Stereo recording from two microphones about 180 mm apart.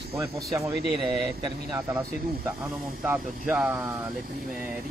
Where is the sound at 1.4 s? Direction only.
20° right (ahead or behind).